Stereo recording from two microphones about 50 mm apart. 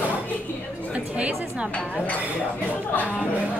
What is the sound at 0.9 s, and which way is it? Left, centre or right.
Speech, right.